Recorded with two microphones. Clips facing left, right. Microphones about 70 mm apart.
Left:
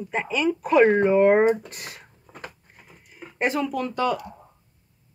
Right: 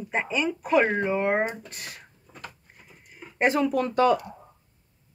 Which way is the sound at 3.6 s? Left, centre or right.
Right.